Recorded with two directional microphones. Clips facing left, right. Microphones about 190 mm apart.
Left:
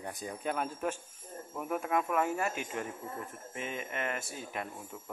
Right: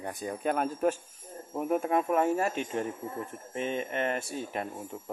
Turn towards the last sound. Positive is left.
turn(degrees=-40)  # may be behind; listen again after turning